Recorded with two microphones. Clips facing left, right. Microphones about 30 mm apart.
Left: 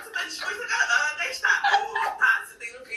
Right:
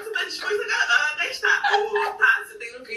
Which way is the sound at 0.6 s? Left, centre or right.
Right.